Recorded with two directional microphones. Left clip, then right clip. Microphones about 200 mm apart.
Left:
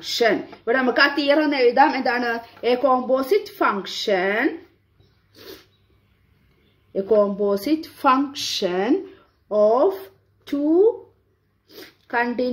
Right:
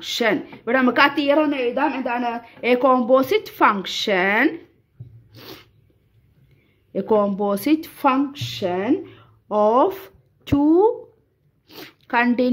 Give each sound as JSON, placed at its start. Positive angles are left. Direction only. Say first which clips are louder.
{"t": 0.0, "sound": "speech", "louder": "left 1 dB", "side_deg": -40}
{"t": 1.3, "sound": "a woman's voice", "louder": "even", "side_deg": -15}
{"t": 1.9, "sound": "a woman's voice", "louder": "left 2 dB", "side_deg": -5}
{"t": 2.6, "sound": "speech", "louder": "right 2 dB", "side_deg": -40}
{"t": 5.3, "sound": "a sound", "louder": "right 1 dB", "side_deg": -45}
{"t": 6.9, "sound": "speech", "louder": "left 1 dB", "side_deg": -45}
{"t": 8.1, "sound": "a woman's voice", "louder": "left 4 dB", "side_deg": -20}
{"t": 9.5, "sound": "speech", "louder": "even", "side_deg": -45}
{"t": 11.6, "sound": "a sound", "louder": "right 3 dB", "side_deg": -45}